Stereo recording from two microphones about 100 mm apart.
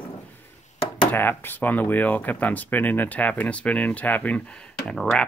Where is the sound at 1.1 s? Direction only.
20° left (ahead or behind).